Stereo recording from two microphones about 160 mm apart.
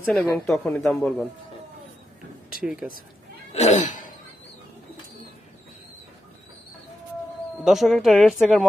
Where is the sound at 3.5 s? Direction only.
45° left (ahead or behind).